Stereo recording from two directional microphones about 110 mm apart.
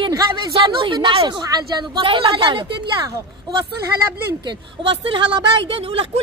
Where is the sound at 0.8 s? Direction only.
45° right (ahead or behind).